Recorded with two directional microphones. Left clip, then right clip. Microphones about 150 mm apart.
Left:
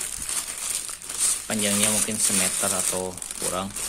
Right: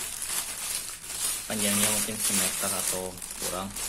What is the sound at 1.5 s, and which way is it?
Speech, 40° left (ahead or behind).